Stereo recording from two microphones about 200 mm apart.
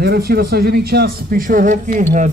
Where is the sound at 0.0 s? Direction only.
50° right (ahead or behind).